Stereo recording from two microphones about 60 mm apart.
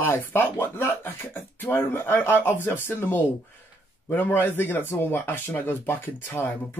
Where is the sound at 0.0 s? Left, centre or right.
Left.